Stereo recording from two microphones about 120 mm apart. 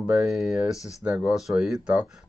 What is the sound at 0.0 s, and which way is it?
Speech, 5° right (ahead or behind).